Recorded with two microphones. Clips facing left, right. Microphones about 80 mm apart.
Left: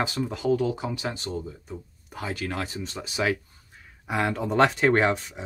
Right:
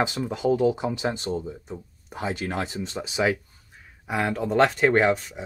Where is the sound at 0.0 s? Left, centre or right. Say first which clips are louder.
Right 2 dB; centre.